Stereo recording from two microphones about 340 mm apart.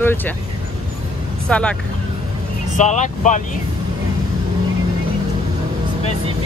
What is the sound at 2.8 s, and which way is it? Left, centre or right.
Speech, left.